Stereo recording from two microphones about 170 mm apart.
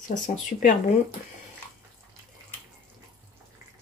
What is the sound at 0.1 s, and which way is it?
Speech, 50° left (ahead or behind).